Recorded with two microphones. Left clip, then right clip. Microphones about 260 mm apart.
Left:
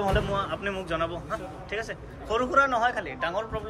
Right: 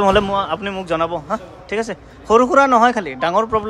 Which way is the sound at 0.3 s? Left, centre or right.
Centre.